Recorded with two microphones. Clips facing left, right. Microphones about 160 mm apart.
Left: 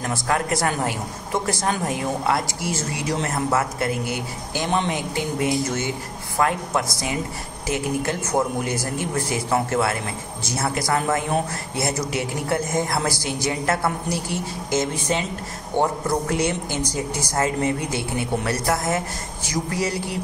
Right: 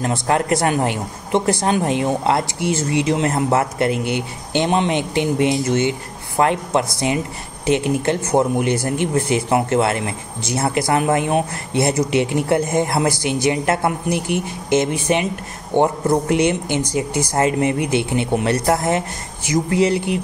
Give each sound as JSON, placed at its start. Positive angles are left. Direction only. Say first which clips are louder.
{"t": 0.0, "sound": "a woman's voice", "louder": "right 5 dB", "side_deg": -25}